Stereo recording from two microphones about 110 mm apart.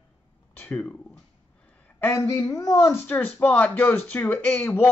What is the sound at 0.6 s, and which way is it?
Speech, 10° left (ahead or behind).